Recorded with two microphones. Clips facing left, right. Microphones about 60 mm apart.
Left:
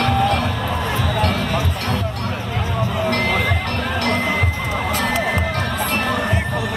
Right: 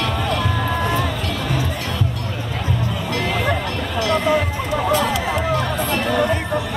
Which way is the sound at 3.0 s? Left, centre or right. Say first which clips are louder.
Left 4 dB; left.